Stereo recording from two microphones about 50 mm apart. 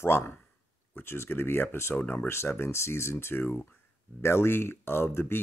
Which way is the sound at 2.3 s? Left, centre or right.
Left.